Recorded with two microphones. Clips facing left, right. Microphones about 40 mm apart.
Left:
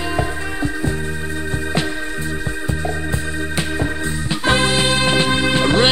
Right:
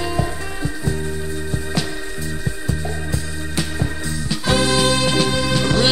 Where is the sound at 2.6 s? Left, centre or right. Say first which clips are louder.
Left 4 dB; left.